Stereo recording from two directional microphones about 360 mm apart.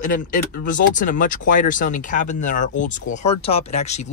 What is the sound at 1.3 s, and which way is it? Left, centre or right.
Speech, left.